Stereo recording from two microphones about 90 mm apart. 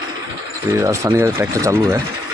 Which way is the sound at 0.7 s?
35° right (ahead or behind).